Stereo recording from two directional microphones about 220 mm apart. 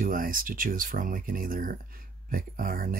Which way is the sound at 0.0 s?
40° right (ahead or behind).